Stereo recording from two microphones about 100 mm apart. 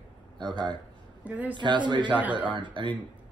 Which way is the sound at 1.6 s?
50° right (ahead or behind).